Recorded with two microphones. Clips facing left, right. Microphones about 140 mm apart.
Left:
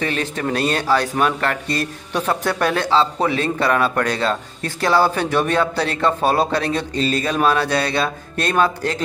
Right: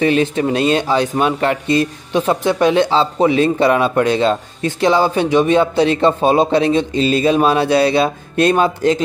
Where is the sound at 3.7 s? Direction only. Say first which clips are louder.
Right 5 dB; 15° right (ahead or behind).